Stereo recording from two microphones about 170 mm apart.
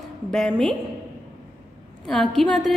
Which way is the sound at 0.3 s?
Centre (ahead or behind).